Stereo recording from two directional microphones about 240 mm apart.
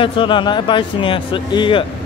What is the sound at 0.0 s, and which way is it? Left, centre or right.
Speech, left.